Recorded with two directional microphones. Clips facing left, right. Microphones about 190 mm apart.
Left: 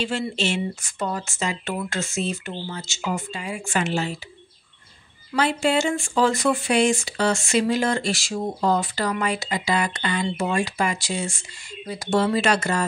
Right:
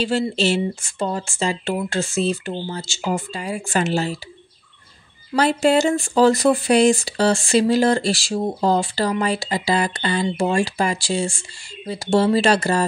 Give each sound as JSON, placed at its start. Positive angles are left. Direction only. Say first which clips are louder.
{"t": 0.4, "sound": "speech", "louder": "right 5 dB", "side_deg": -30}
{"t": 5.3, "sound": "speech", "louder": "right 5 dB", "side_deg": -40}